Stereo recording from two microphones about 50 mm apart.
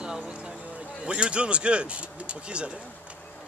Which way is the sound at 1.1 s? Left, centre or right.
Right.